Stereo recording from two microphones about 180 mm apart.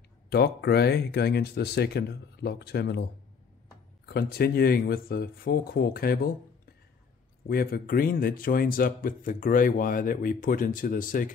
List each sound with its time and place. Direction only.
0.3 s speech: 60° left (ahead or behind)
7.4 s speech: 55° left (ahead or behind)